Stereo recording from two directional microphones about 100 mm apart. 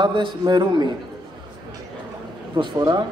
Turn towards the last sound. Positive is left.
turn(degrees=-45)  # may be behind; listen again after turning